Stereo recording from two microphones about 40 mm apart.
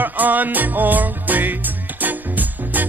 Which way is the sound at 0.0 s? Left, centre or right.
Right.